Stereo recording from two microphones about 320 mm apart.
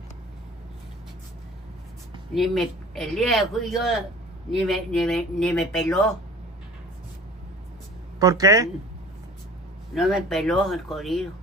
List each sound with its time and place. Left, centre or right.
2.3 s speech: centre
8.2 s speech: centre
9.9 s speech: centre